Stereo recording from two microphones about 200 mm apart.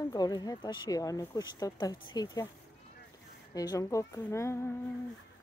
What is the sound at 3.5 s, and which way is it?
A woman's voice, 20° left (ahead or behind).